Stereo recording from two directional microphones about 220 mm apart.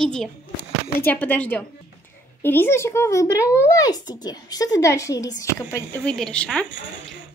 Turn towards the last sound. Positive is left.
turn(degrees=5)  # may be behind; listen again after turning